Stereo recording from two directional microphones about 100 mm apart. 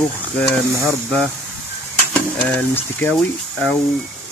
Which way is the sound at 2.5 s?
15° left (ahead or behind).